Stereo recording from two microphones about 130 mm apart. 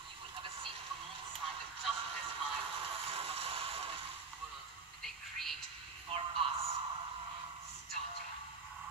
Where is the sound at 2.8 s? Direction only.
45° right (ahead or behind).